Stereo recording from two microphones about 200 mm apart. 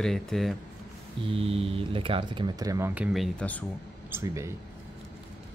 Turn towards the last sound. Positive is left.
turn(degrees=-15)  # may be behind; listen again after turning